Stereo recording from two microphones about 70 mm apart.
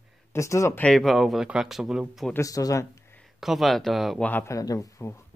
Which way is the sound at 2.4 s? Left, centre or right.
Left.